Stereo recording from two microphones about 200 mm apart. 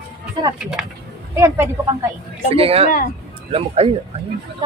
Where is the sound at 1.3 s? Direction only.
15° right (ahead or behind).